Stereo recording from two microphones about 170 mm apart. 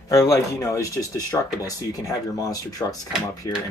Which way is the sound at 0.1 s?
20° left (ahead or behind).